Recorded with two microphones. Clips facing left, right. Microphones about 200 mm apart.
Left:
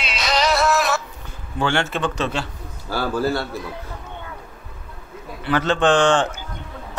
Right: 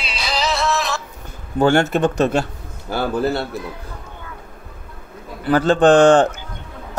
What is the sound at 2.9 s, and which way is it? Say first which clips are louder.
Speech: right 2 dB; 20° right (ahead or behind).